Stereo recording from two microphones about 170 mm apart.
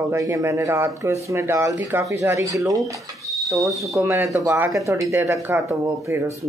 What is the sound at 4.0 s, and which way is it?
Speech, 15° right (ahead or behind).